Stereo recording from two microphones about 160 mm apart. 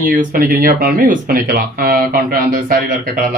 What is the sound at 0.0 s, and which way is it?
Speech, 60° right (ahead or behind).